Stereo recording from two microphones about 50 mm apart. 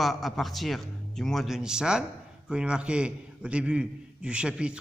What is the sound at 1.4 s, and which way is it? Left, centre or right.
A man's voice, centre.